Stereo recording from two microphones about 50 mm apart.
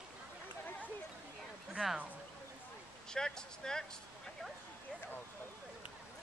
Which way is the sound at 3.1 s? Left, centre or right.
Centre.